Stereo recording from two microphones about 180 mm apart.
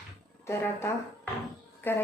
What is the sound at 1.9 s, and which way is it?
Speech, 10° left (ahead or behind).